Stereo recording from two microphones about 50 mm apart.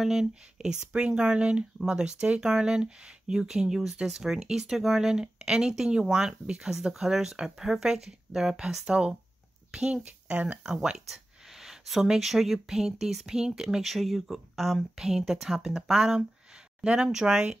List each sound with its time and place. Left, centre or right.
0.0 s speech: centre
9.7 s a sound: centre
10.0 s speech: right
11.1 s a sound: centre
12.2 s speech: centre
16.8 s speech: centre